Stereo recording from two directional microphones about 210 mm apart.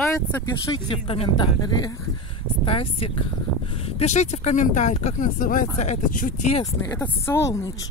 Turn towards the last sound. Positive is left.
turn(degrees=15)  # may be behind; listen again after turning